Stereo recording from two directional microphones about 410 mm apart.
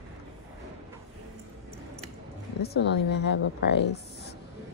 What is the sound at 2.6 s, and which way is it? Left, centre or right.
A woman's voice, left.